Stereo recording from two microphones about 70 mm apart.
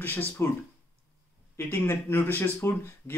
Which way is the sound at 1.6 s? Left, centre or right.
Left.